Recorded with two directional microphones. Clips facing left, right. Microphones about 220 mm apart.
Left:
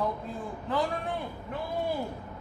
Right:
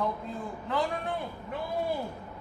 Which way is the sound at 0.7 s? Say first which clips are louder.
Left 1 dB; centre (ahead or behind).